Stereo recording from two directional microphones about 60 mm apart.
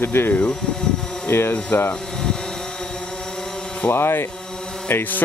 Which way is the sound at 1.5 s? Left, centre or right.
Left.